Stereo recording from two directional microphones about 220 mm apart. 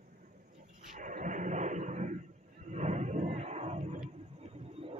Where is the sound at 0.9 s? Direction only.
35° right (ahead or behind).